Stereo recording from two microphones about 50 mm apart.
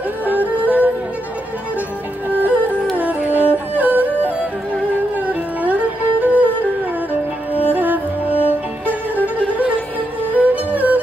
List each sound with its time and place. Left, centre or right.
0.3 s yodeling: right
2.2 s music: right
7.7 s music: right